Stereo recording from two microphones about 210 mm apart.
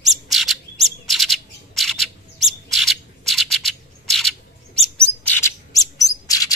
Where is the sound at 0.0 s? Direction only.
Centre (ahead or behind).